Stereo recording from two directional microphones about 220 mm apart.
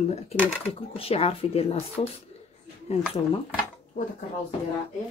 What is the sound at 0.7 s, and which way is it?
Speech, 25° left (ahead or behind).